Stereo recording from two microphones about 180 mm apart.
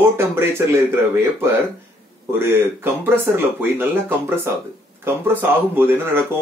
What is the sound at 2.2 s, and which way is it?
Speech, 15° right (ahead or behind).